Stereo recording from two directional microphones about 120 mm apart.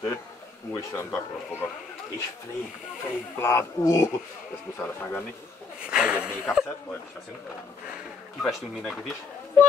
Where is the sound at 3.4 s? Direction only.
20° left (ahead or behind).